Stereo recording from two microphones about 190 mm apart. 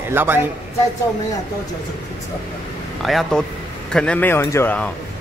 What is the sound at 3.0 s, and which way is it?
Speech, centre (ahead or behind).